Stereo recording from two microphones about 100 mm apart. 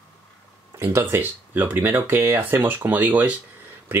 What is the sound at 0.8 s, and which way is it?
Speech, 25° right (ahead or behind).